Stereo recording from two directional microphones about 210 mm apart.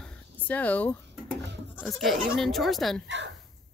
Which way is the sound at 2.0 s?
Centre (ahead or behind).